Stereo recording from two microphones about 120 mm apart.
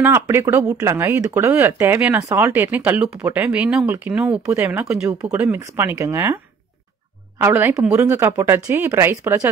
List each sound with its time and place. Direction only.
0.0 s speech: 20° right (ahead or behind)
5.6 s speech: 25° right (ahead or behind)
7.4 s speech: 20° right (ahead or behind)